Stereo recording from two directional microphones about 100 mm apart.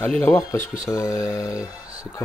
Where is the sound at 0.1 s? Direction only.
10° left (ahead or behind).